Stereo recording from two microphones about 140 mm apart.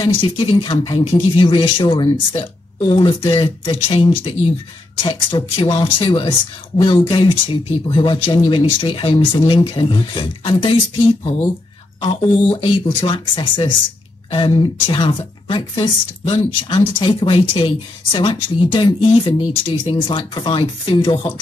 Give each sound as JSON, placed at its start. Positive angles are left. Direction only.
{"t": 0.0, "sound": "speech", "side_deg": 35}